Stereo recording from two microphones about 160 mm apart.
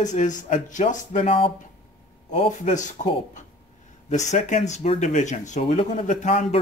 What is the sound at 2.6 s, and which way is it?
Speech, 50° left (ahead or behind).